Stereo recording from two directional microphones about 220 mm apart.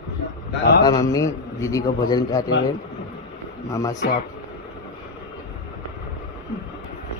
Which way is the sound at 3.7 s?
15° left (ahead or behind).